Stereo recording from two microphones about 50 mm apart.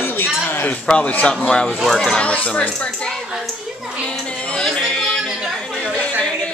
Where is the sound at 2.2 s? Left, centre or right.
Left.